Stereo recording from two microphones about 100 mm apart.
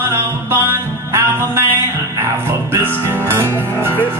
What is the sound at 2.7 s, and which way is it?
Music, 20° right (ahead or behind).